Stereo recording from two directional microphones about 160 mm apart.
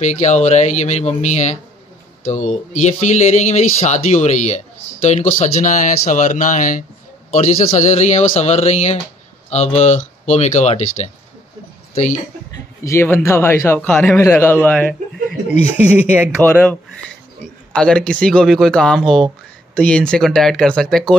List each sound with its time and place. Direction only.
0.0 s speech: 45° left (ahead or behind)
2.8 s speech: 45° left (ahead or behind)
12.8 s a man's voice: 15° left (ahead or behind)
15.8 s speech: 10° right (ahead or behind)
16.4 s a man's voice: 5° left (ahead or behind)